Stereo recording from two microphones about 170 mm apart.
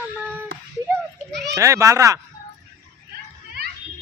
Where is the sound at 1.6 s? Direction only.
15° right (ahead or behind).